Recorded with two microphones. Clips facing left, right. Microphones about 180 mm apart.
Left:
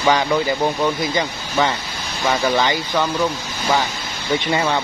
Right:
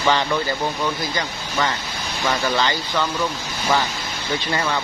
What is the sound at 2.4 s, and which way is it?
Speech, 15° left (ahead or behind).